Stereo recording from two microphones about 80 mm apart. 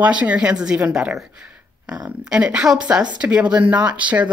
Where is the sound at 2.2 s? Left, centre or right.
Centre.